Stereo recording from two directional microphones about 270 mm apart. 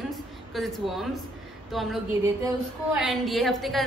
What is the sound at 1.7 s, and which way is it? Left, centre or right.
Speech, centre.